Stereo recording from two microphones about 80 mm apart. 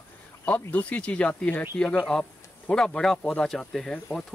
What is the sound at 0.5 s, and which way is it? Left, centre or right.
Speech, left.